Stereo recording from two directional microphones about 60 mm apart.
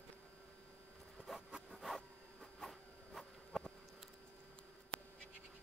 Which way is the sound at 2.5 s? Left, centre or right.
Centre.